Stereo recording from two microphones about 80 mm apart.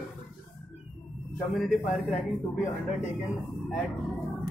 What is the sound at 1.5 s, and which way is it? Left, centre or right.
Speech, centre.